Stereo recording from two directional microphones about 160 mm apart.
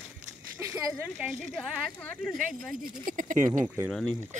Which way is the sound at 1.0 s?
Centre (ahead or behind).